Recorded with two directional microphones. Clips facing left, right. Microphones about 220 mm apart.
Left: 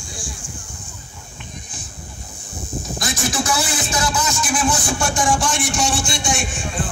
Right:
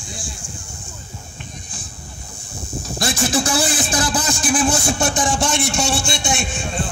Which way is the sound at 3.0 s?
30° right (ahead or behind).